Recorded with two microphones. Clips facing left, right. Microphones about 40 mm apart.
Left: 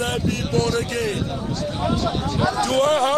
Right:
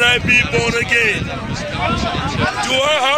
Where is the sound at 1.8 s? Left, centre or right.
Right.